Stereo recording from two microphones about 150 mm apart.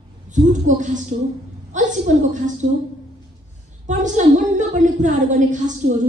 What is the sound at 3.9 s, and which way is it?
A woman's voice, 55° right (ahead or behind).